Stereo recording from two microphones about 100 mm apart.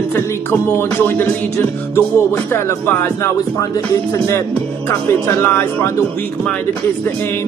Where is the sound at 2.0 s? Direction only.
25° left (ahead or behind).